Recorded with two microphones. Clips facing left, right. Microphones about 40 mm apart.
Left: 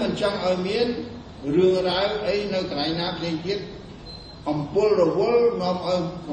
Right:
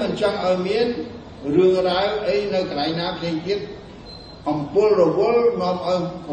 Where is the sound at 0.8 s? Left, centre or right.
Right.